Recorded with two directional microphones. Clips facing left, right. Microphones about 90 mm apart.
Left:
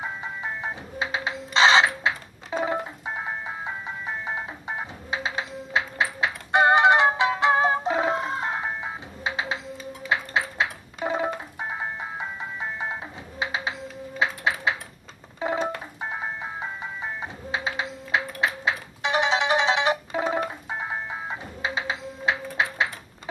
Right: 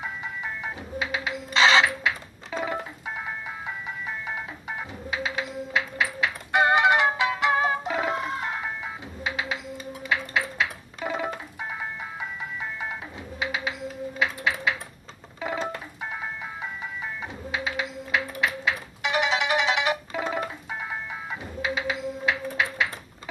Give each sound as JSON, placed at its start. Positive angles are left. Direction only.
{"t": 0.0, "sound": "music", "side_deg": 25}
{"t": 14.2, "sound": "a sound", "side_deg": 30}
{"t": 15.4, "sound": "ice cream truck", "side_deg": 25}